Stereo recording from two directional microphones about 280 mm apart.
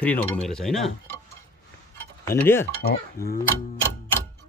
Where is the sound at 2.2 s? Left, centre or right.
Centre.